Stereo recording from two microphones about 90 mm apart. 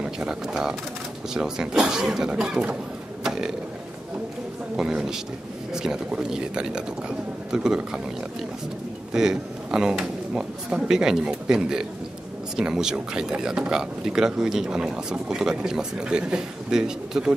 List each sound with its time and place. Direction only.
0.0 s speech: 10° right (ahead or behind)
3.3 s a sound: 5° right (ahead or behind)
4.7 s speech: 5° right (ahead or behind)